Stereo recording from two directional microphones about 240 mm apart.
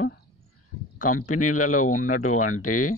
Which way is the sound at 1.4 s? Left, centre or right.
Left.